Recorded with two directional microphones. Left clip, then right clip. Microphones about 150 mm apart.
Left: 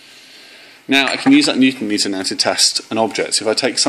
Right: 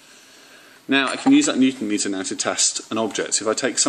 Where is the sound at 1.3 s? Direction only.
30° right (ahead or behind).